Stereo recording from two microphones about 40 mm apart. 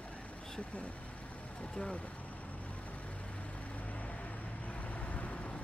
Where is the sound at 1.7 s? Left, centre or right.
Left.